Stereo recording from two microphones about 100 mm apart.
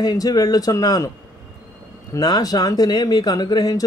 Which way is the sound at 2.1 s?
40° left (ahead or behind).